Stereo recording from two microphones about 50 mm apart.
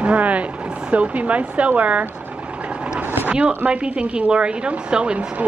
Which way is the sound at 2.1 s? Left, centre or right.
Right.